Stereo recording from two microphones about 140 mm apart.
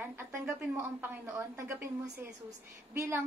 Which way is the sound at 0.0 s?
15° right (ahead or behind).